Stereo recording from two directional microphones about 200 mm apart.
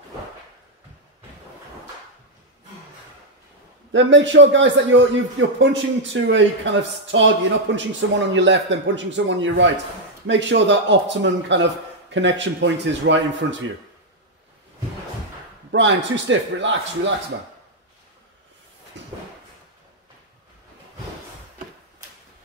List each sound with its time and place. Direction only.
3.9 s a man's voice: 65° right (ahead or behind)
15.7 s a man's voice: 65° right (ahead or behind)
18.9 s a sound: 65° right (ahead or behind)